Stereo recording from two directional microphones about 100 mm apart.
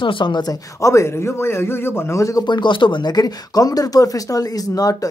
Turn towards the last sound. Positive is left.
turn(degrees=35)  # may be behind; listen again after turning